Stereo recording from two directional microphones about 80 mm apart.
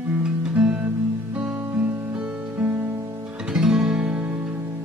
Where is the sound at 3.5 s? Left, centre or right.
Centre.